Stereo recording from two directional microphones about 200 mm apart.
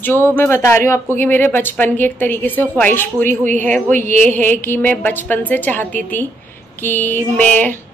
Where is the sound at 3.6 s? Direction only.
5° left (ahead or behind).